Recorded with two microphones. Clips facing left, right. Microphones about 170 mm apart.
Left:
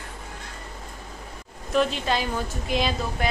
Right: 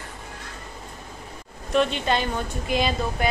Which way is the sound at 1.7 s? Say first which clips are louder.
Right 1 dB; centre (ahead or behind).